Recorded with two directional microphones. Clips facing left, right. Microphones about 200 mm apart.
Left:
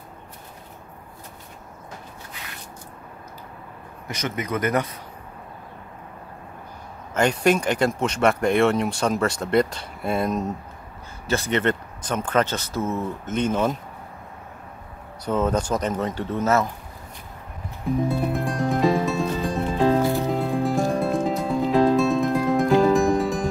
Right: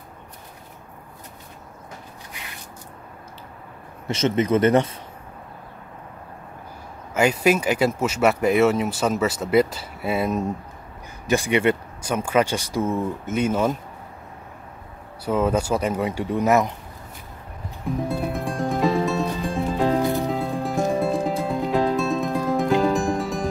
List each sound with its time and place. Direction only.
4.1 s speech: 25° right (ahead or behind)
7.2 s speech: 5° right (ahead or behind)
15.2 s speech: 10° right (ahead or behind)
17.8 s music: centre (ahead or behind)
20.0 s music: 15° right (ahead or behind)
20.2 s music: centre (ahead or behind)